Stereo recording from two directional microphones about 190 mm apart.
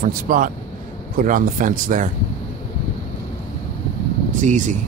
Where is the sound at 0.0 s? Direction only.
45° right (ahead or behind).